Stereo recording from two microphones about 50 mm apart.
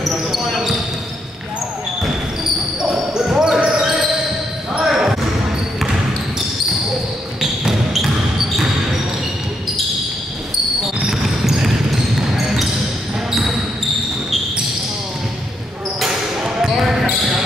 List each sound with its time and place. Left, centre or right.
0.1 s basketball bounce: centre
2.8 s basketball bounce: centre
7.6 s basketball bounce: centre
11.1 s basketball bounce: centre
16.4 s basketball bounce: centre